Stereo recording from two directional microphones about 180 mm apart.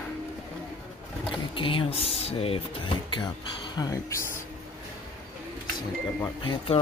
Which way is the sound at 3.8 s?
20° left (ahead or behind).